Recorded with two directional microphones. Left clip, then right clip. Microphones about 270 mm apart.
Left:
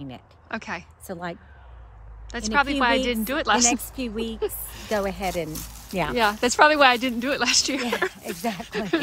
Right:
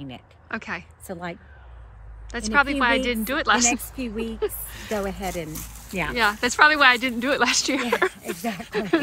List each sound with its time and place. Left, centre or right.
0.0 s a woman's voice: centre
5.2 s speech: left
6.1 s a woman's voice: centre